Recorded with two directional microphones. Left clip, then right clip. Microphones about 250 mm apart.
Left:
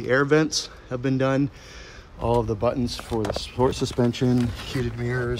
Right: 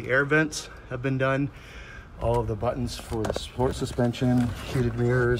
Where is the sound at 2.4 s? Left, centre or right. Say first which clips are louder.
Left 4 dB; left.